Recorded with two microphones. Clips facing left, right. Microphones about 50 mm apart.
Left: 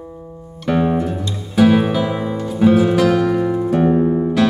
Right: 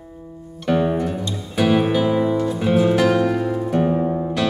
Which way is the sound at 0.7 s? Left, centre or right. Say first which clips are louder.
Left 2 dB; centre.